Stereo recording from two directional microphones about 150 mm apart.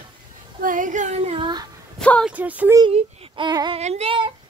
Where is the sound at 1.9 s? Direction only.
10° left (ahead or behind).